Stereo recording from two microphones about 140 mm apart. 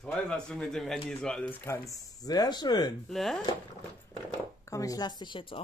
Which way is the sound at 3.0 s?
Centre (ahead or behind).